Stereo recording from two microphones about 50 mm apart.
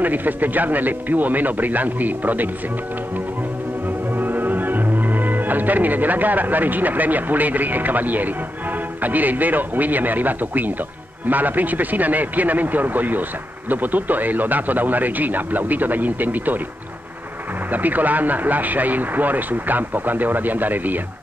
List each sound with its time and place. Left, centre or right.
0.0 s speech: right
4.1 s speech: right
17.6 s speech: right